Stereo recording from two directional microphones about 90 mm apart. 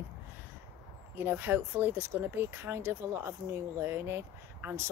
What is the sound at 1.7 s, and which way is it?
Speech, 35° right (ahead or behind).